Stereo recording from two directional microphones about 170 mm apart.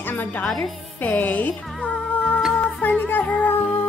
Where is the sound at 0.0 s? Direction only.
10° left (ahead or behind).